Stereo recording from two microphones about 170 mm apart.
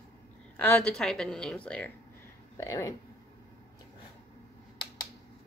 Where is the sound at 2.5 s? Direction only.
20° left (ahead or behind).